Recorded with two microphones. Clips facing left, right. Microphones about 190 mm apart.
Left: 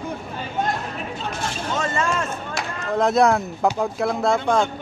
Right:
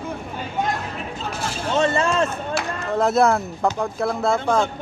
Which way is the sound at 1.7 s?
30° right (ahead or behind).